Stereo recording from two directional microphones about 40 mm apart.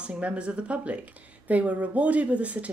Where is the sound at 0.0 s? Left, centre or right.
Right.